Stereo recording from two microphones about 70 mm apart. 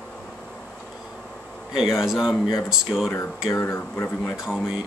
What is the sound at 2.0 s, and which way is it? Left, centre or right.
Speech, centre.